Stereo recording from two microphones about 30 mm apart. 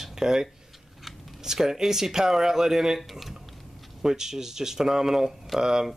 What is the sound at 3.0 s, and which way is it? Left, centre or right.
Speech, centre.